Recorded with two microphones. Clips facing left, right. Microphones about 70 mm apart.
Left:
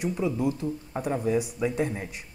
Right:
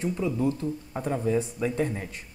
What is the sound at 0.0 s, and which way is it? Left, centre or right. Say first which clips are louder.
Speech: even; centre.